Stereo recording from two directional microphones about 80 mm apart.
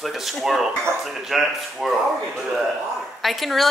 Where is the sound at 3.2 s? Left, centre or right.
Centre.